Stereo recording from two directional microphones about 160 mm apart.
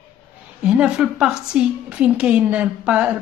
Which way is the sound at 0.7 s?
5° right (ahead or behind).